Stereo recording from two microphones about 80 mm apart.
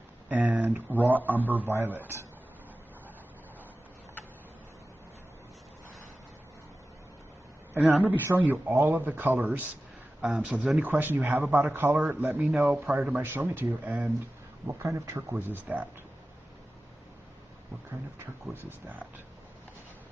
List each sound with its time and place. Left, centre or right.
0.3 s a sound: centre
0.7 s a man's voice: right
7.7 s a woman's voice: right
14.7 s speech: right
15.3 s a man's voice: centre
18.2 s a man's voice: right